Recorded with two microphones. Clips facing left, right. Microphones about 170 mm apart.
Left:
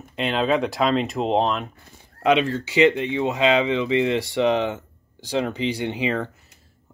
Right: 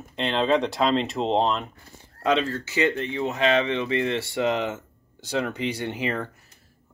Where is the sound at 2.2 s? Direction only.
20° left (ahead or behind).